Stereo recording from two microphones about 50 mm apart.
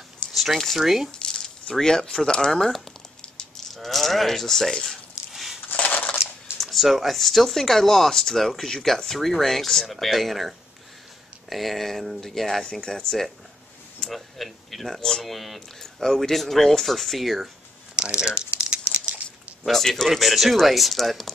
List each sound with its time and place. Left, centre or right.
0.3 s speech: centre
1.2 s speech: centre
5.7 s a sound: left
6.6 s speech: centre
17.9 s crumpling: centre
19.6 s speech: centre